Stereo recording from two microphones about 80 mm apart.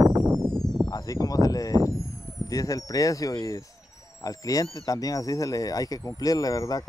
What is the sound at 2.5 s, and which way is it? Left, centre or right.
Speech, left.